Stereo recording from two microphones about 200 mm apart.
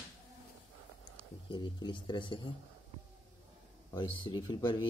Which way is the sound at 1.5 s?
25° left (ahead or behind).